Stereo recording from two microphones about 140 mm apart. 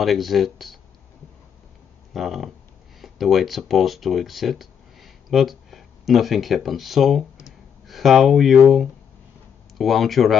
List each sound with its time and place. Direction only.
0.0 s speech: centre (ahead or behind)
2.1 s speech: centre (ahead or behind)